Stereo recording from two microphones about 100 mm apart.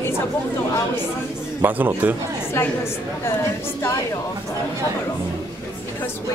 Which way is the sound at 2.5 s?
25° left (ahead or behind).